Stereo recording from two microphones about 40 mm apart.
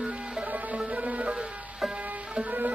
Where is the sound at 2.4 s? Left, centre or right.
Right.